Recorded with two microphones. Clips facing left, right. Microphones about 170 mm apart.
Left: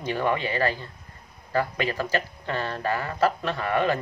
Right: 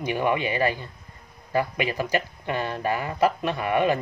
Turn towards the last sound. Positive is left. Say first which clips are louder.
# right 2 dB
turn(degrees=-15)  # may be behind; listen again after turning